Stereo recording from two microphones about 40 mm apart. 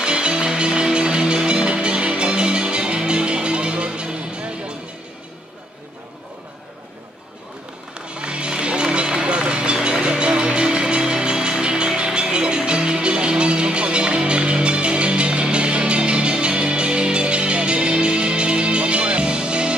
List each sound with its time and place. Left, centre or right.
0.0 s music: right
8.1 s music: right